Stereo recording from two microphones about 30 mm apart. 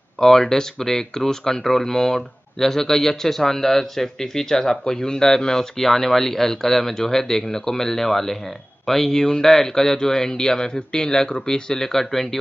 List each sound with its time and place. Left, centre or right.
0.2 s speech: centre; by 11.6 s left
11.7 s speech: centre